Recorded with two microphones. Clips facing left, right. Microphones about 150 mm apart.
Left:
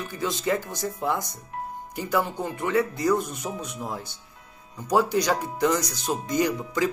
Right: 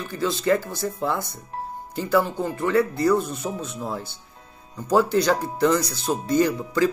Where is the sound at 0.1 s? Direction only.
15° left (ahead or behind).